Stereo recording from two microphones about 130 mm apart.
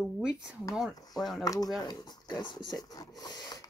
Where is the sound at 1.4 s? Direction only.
25° left (ahead or behind).